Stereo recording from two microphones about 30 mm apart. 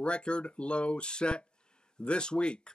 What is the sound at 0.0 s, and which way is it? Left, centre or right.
Speech, left.